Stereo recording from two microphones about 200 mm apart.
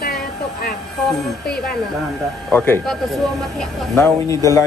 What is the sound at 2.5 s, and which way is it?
Speech, 10° left (ahead or behind).